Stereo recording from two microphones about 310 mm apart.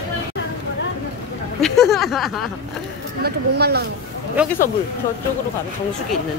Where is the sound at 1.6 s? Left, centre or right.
Centre.